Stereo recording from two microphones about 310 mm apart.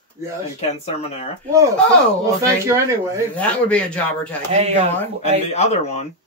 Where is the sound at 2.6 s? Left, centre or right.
Centre.